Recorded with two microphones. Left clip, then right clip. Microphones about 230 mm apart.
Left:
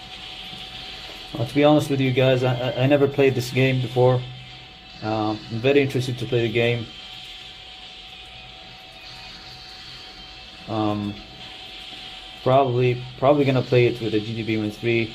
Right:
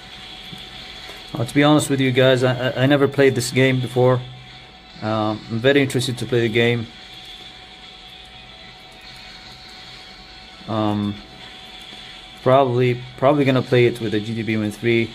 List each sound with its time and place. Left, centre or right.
1.5 s a man's voice: right
10.7 s speech: right
12.4 s a man's voice: right